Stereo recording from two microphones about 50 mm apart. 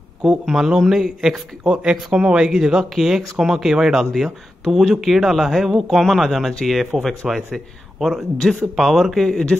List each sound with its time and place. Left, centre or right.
0.2 s speech: centre